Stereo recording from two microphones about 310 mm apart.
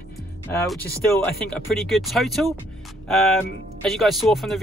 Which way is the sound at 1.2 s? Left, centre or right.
Centre.